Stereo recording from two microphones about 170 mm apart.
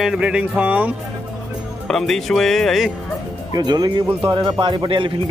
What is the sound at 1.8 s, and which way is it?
Speech, centre (ahead or behind).